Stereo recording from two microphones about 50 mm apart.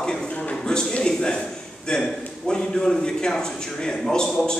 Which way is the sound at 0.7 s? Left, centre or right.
Centre.